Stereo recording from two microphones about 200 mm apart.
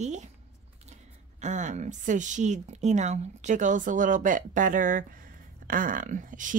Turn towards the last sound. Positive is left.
turn(degrees=-40)  # may be behind; listen again after turning